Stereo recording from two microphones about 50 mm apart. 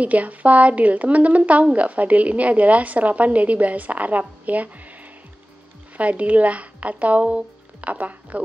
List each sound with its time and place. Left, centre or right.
0.0 s a woman's voice: right